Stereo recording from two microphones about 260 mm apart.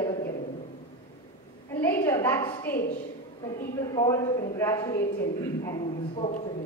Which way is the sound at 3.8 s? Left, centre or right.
Centre.